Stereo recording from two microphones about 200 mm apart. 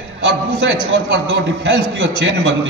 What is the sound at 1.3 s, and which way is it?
A man's voice, 65° right (ahead or behind).